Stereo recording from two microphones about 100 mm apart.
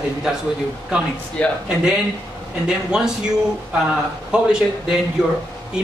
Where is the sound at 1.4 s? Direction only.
10° left (ahead or behind).